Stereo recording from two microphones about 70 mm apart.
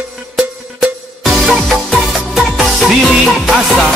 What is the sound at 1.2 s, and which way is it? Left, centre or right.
Music, centre.